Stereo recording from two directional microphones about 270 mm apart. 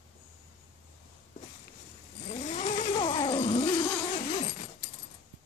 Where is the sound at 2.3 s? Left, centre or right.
Left.